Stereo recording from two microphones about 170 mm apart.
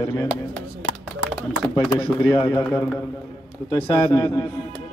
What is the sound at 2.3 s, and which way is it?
A man's voice, 20° left (ahead or behind).